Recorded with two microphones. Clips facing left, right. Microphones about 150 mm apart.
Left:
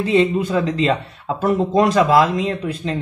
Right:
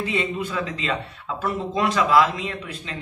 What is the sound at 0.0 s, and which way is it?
Speech, 35° left (ahead or behind).